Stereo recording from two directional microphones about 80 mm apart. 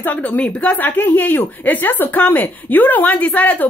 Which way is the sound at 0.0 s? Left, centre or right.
Left.